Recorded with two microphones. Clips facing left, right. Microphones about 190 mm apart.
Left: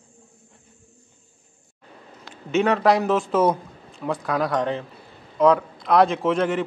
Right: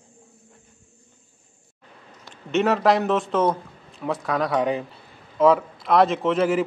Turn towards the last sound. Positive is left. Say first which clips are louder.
# right 1 dB
turn(degrees=-5)  # may be behind; listen again after turning